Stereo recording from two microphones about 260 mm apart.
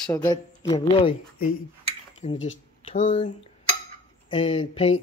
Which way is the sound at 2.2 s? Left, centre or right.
Left.